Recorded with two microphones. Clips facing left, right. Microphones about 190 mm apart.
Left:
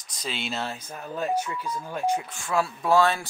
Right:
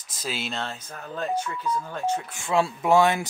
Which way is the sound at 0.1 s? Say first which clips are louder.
Right 1 dB; 5° right (ahead or behind).